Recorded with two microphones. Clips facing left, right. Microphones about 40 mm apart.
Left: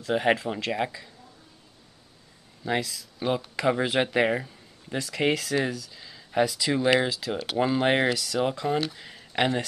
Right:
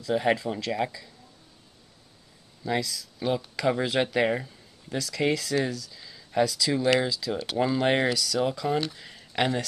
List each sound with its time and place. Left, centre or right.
0.0 s speech: left
2.6 s speech: left
4.9 s speech: left
5.6 s speech: centre
6.4 s speech: left
7.1 s speech: left
7.3 s speech: centre
8.6 s speech: centre